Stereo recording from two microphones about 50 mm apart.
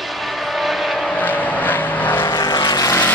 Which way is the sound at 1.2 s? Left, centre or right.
Left.